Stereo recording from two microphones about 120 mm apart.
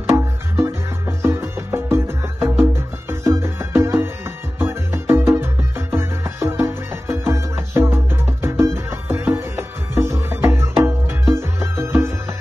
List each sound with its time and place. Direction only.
0.1 s music: 25° right (ahead or behind)